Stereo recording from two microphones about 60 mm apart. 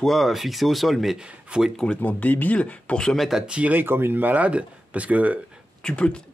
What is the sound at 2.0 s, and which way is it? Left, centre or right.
Speech, left.